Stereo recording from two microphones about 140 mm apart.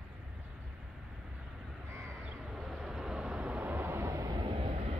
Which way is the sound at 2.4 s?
5° right (ahead or behind).